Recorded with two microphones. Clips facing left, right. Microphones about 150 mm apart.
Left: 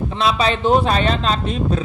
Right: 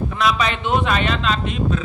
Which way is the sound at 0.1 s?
30° left (ahead or behind).